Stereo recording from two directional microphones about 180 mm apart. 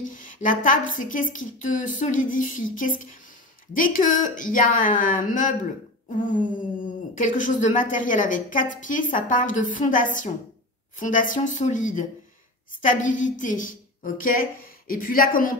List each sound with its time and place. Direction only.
0.1 s a woman's voice: 45° left (ahead or behind)